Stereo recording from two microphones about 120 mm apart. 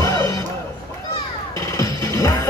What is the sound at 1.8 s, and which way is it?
Music, 30° left (ahead or behind).